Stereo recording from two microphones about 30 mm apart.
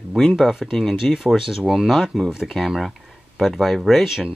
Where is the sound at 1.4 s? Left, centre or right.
Centre.